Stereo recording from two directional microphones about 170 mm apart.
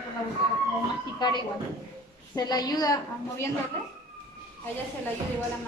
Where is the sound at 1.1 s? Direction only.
25° left (ahead or behind).